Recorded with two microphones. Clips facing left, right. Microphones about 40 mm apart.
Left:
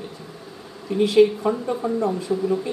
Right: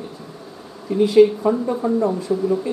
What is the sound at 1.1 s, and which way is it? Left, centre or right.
Speech, centre.